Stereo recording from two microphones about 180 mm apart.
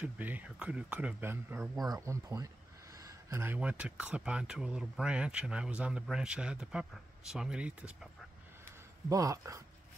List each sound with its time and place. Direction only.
0.0 s speech: 10° right (ahead or behind)
9.1 s speech: 20° right (ahead or behind)